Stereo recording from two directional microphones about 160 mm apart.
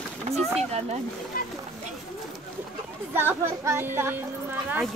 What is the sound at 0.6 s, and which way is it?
Speech, 40° right (ahead or behind).